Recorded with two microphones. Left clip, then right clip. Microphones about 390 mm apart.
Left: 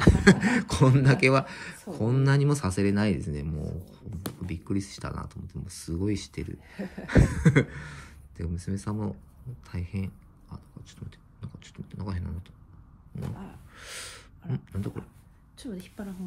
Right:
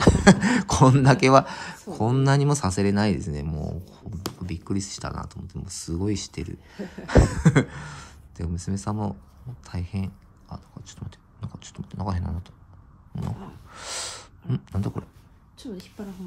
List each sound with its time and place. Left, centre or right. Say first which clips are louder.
0.0 s speech: right 3 dB; centre
13.7 s speech: right 9 dB; centre
15.5 s a woman's voice: right 2 dB; centre